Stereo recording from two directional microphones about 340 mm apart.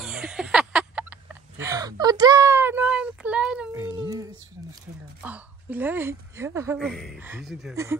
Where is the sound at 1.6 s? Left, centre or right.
Centre.